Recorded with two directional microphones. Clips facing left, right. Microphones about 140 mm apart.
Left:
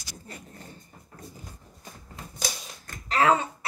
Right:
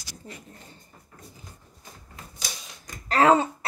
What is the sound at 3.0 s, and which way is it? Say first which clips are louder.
Speech: right 3 dB; 35° right (ahead or behind).